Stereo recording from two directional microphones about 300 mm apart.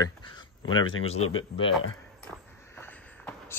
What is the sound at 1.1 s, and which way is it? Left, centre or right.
Speech, left.